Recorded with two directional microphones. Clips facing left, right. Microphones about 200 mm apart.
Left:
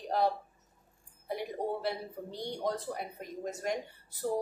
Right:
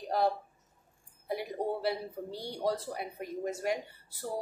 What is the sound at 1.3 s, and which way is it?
A woman's voice, 5° right (ahead or behind).